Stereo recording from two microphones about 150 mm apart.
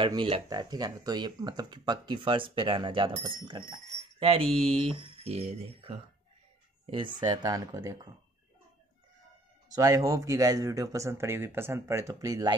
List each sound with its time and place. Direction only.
0.0 s speech: 35° right (ahead or behind)
6.9 s speech: 30° right (ahead or behind)
9.8 s speech: 20° right (ahead or behind)